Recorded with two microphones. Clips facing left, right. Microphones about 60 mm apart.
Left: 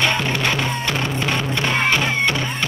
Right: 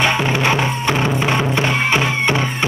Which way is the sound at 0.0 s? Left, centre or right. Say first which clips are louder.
Right 3 dB; centre.